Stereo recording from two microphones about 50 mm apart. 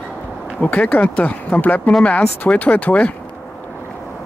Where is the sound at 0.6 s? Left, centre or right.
Left.